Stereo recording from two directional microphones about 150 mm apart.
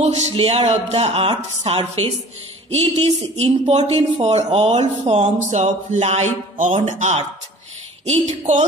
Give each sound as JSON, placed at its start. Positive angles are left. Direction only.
{"t": 0.0, "sound": "speech", "side_deg": -45}